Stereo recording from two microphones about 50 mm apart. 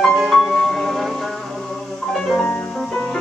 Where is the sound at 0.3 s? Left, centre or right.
Centre.